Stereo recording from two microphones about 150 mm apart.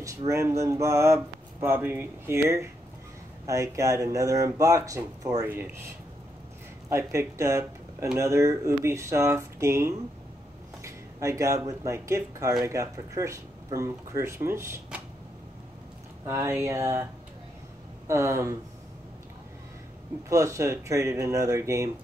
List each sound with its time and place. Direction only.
0.3 s speech: 20° right (ahead or behind)
6.9 s speech: 20° right (ahead or behind)
16.3 s speech: 20° right (ahead or behind)
20.2 s speech: 20° right (ahead or behind)